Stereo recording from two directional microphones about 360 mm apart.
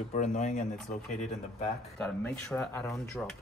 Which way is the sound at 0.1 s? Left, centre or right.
Centre.